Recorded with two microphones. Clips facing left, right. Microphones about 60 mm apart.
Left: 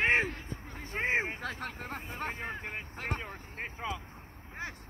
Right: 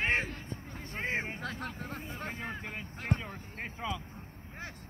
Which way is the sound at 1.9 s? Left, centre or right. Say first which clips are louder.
Left 2 dB; left.